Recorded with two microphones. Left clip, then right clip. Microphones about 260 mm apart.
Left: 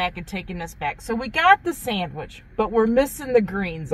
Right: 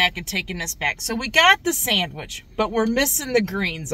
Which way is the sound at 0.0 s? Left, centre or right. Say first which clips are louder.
Right 6 dB; right.